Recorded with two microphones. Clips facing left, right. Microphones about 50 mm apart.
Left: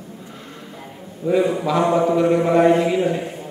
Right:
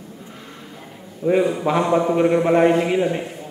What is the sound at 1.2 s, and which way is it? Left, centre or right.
Speech, right.